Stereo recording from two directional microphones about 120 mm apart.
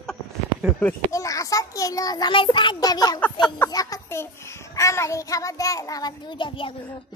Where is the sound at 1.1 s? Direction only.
25° left (ahead or behind); by 6.7 s 45° left (ahead or behind).